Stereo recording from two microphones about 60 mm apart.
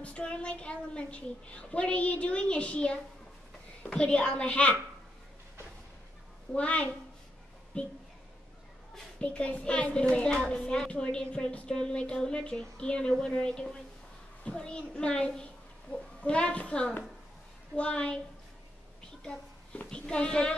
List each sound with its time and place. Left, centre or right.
0.0 s a woman's voice: centre
6.5 s a woman's voice: left
9.2 s a woman's voice: left
19.9 s a woman's voice: centre